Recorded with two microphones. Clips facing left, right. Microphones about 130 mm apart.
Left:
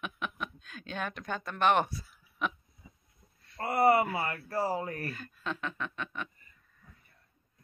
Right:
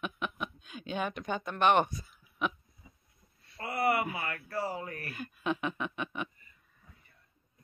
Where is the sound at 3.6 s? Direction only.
40° left (ahead or behind).